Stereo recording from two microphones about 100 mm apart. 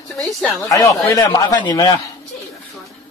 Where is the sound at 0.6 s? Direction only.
35° left (ahead or behind).